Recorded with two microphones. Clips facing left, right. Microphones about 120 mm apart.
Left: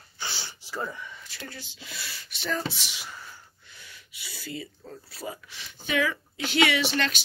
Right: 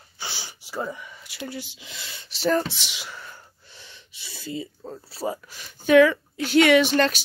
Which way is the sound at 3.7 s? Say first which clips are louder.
Right 2 dB; 30° right (ahead or behind).